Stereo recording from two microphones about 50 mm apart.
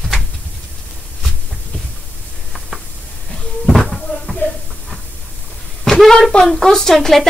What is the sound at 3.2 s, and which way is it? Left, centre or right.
Cupboard open or close, centre.